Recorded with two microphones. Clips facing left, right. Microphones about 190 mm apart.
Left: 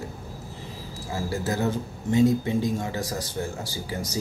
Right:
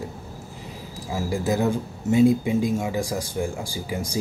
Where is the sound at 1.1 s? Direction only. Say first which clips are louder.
Right 4 dB; 15° right (ahead or behind).